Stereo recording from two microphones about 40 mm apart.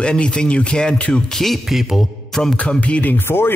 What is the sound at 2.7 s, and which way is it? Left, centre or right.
Speech, left.